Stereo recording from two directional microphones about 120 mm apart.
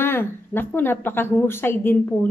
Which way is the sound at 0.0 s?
20° left (ahead or behind).